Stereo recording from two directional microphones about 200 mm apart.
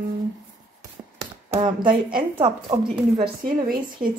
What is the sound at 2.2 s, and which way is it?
Speech, 25° right (ahead or behind).